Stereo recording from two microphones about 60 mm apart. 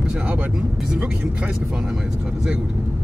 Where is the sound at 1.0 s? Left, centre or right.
Right.